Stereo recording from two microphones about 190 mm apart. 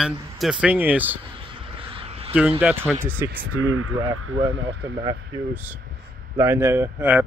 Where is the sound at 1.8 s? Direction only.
30° right (ahead or behind).